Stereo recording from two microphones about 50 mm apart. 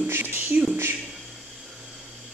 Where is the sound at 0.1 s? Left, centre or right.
Right.